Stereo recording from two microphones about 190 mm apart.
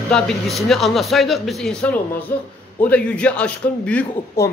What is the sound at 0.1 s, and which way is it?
A man's voice, centre (ahead or behind).